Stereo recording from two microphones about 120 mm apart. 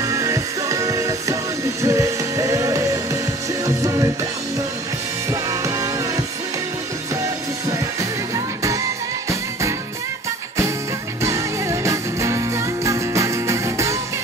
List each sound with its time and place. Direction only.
0.0 s music: 25° right (ahead or behind)
5.3 s music: 25° right (ahead or behind)
9.3 s music: 25° right (ahead or behind)
11.2 s music: 25° right (ahead or behind)